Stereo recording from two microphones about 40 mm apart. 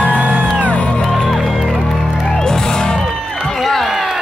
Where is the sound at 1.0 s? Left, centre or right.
Centre.